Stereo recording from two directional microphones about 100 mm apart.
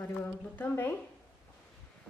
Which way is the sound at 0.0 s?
25° left (ahead or behind).